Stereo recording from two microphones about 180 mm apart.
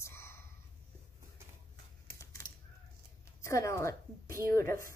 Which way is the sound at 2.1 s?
15° left (ahead or behind).